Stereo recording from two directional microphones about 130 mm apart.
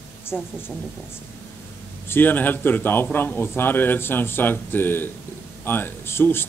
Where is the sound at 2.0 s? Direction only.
15° left (ahead or behind).